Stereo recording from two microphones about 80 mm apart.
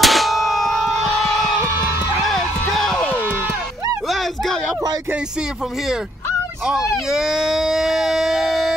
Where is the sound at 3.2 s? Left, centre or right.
Right.